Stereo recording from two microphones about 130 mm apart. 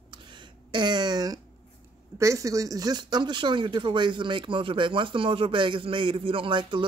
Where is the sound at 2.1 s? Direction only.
25° right (ahead or behind).